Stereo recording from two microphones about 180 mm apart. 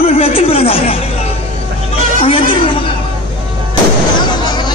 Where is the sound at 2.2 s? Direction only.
30° left (ahead or behind).